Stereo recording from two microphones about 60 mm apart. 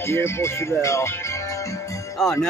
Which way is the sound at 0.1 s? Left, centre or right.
Left.